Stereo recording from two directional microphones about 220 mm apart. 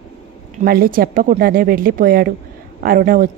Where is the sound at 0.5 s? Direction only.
40° right (ahead or behind).